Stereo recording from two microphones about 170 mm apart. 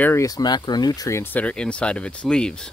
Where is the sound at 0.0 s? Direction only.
15° left (ahead or behind).